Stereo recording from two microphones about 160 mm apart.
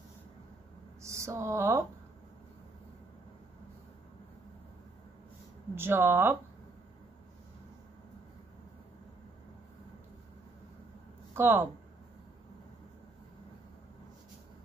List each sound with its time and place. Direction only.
1.0 s speech: 15° right (ahead or behind)
5.8 s speech: 15° right (ahead or behind)
11.3 s speech: 15° right (ahead or behind)